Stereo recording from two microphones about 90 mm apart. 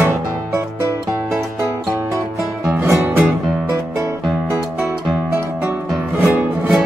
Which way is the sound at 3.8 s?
35° right (ahead or behind).